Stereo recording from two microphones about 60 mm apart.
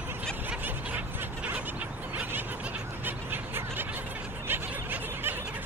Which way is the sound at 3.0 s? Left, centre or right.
Right.